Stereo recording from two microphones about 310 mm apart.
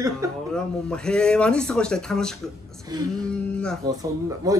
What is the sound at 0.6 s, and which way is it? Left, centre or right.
Speech, centre.